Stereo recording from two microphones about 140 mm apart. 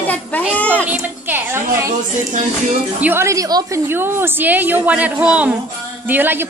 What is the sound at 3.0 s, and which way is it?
A woman's voice, 15° right (ahead or behind).